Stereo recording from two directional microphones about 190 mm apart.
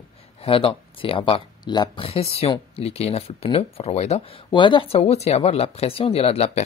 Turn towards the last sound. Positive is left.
turn(degrees=30)  # may be behind; listen again after turning